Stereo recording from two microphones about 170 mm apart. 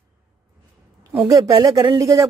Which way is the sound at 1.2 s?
20° right (ahead or behind).